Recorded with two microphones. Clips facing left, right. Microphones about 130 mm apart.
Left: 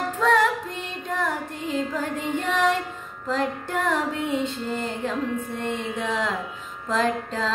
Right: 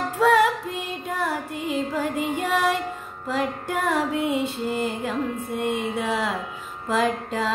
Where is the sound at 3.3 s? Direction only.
10° right (ahead or behind).